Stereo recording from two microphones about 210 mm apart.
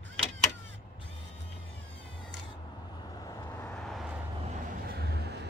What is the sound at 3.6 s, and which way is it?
Vehicle, 5° left (ahead or behind).